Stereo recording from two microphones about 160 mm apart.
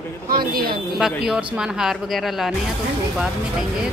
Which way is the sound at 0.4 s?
70° right (ahead or behind).